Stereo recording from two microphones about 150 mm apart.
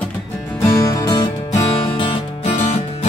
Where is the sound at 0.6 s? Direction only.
20° left (ahead or behind).